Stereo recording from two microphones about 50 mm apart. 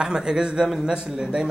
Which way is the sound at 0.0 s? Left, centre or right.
Centre.